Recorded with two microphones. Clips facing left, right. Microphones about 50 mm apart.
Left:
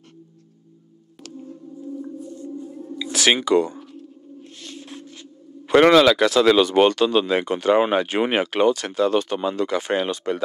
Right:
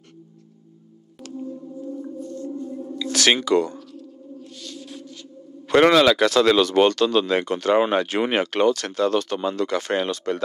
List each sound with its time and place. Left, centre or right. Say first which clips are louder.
1.9 s music: left 1 dB; centre
3.0 s speech: even; centre
3.7 s a sound: even; left
5.7 s speech: left 2 dB; centre